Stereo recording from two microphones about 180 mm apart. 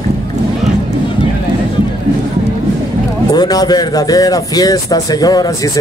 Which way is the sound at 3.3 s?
20° left (ahead or behind).